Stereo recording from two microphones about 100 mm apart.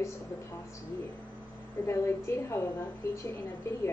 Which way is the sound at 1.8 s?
25° left (ahead or behind).